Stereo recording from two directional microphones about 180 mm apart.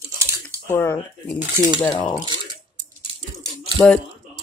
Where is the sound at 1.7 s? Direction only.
25° left (ahead or behind).